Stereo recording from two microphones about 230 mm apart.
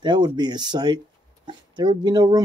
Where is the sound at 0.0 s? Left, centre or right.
Centre.